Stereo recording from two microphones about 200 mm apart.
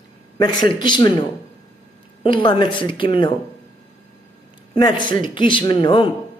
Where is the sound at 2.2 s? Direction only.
25° left (ahead or behind).